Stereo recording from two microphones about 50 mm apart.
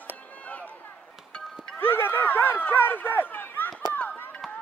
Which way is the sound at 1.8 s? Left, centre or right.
Left.